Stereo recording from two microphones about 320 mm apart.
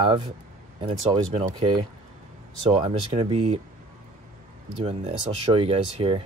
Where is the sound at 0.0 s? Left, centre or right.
Centre.